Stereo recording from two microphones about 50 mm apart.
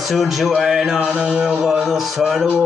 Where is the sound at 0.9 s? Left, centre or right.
Right.